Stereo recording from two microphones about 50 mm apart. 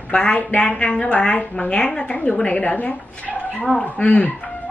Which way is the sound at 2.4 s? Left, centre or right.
Left.